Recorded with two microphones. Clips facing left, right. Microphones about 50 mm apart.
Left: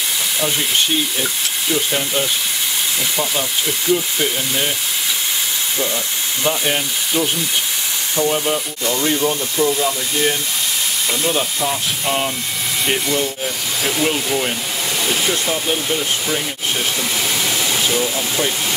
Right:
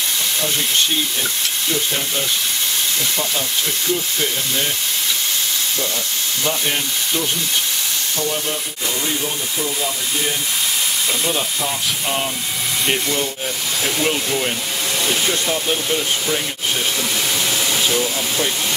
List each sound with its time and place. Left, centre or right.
3.9 s speech: centre
6.4 s speech: centre
8.2 s speech: left
11.2 s speech: centre
17.8 s speech: centre